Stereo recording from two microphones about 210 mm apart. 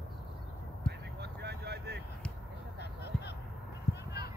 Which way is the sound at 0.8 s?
50° right (ahead or behind).